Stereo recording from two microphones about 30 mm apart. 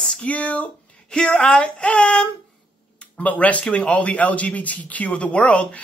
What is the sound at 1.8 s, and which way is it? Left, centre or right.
Speech, left.